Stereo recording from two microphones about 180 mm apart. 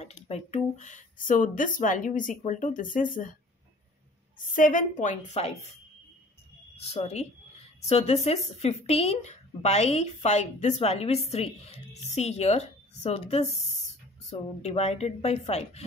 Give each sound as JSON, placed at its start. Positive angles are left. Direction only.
{"t": 0.0, "sound": "speech", "side_deg": 40}
{"t": 4.4, "sound": "speech", "side_deg": 45}
{"t": 6.8, "sound": "speech", "side_deg": 35}